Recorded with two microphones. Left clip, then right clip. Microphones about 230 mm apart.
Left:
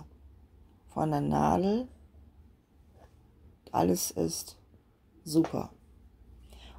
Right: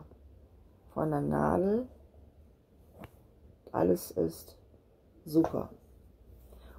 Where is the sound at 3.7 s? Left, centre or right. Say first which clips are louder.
Left 1 dB; left.